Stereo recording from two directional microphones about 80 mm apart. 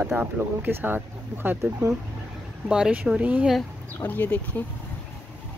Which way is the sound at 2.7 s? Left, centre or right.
Centre.